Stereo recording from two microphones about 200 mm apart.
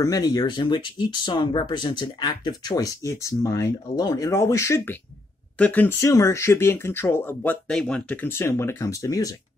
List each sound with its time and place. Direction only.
0.0 s speech: 20° left (ahead or behind)